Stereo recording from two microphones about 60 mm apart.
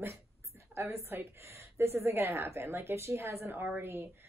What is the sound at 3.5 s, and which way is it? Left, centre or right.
Speech, right.